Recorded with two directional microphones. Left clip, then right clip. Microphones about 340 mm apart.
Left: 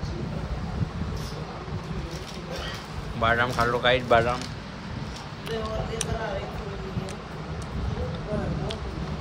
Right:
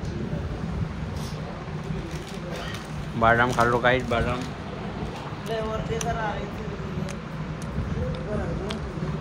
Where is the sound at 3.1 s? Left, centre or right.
Centre.